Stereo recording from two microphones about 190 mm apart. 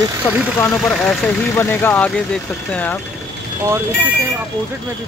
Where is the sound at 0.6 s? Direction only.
5° left (ahead or behind).